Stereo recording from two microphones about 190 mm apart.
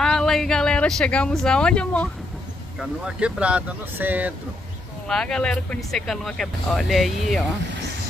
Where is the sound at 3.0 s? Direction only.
5° right (ahead or behind).